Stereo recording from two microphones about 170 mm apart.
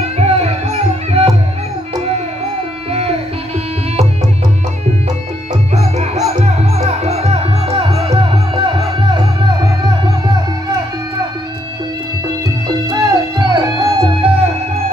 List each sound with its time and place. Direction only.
0.0 s music: 40° right (ahead or behind)
2.9 s music: 35° right (ahead or behind)
5.8 s music: 40° right (ahead or behind)
8.7 s music: 25° right (ahead or behind)
12.9 s music: 20° right (ahead or behind)